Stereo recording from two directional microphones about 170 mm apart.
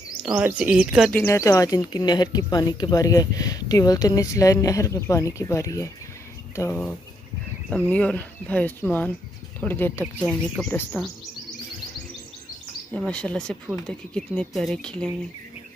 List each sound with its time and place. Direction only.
0.3 s speech: 15° right (ahead or behind)
1.1 s speech: 15° left (ahead or behind)
10.1 s speech: 5° right (ahead or behind)
10.7 s speech: 10° left (ahead or behind)
12.9 s speech: 5° left (ahead or behind)